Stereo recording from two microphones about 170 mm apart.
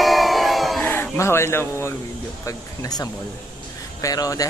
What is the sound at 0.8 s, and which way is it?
Speech, 15° left (ahead or behind).